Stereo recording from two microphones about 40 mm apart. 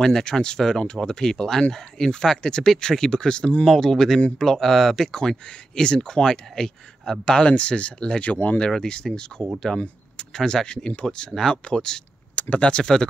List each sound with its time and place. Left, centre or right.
0.0 s speech: centre
3.6 s speech: centre; by 8.5 s left
8.7 s speech: centre
9.7 s speech: centre
10.3 s speech: centre
12.4 s speech: left